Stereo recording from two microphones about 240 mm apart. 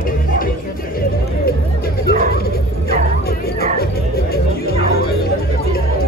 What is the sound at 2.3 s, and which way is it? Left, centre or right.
Music, left.